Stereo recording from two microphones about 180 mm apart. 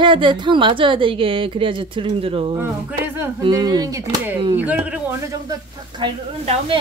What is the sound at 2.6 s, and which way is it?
Speech, 15° right (ahead or behind).